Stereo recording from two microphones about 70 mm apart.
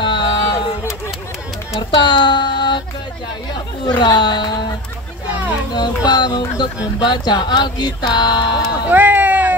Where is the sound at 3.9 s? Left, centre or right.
Left.